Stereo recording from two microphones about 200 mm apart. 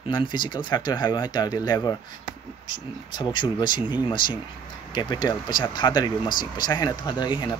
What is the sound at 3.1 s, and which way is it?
Speech, 25° left (ahead or behind).